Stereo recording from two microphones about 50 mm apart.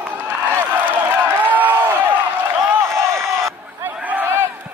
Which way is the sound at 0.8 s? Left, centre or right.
Right.